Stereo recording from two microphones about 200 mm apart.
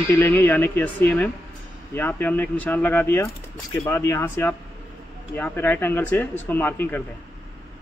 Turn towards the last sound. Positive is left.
turn(degrees=10)  # may be behind; listen again after turning